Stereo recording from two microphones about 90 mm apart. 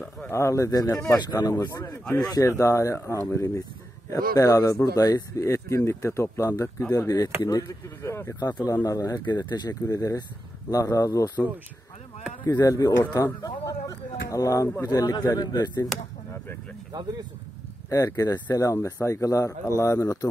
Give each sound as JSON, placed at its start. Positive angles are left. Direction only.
{"t": 0.3, "sound": "speech", "side_deg": 30}
{"t": 8.4, "sound": "speech", "side_deg": 50}
{"t": 9.2, "sound": "speech", "side_deg": 50}
{"t": 12.4, "sound": "speech", "side_deg": 40}
{"t": 17.8, "sound": "speech", "side_deg": 35}